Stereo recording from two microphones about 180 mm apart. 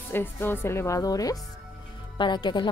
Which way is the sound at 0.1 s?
10° left (ahead or behind).